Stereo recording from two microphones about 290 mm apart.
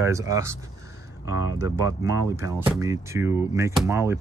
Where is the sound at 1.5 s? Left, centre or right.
Centre.